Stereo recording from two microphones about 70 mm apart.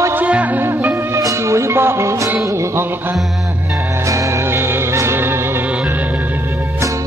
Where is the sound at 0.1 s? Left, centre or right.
Right.